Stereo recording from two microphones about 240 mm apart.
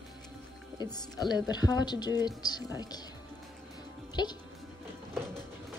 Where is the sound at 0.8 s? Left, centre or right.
Centre.